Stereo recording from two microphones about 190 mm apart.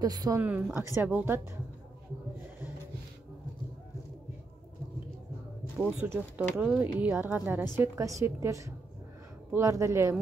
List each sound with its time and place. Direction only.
0.0 s a woman's voice: 20° right (ahead or behind)
5.8 s a woman's voice: 10° right (ahead or behind)